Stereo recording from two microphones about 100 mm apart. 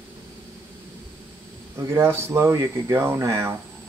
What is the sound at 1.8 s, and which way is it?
Speech, 30° right (ahead or behind).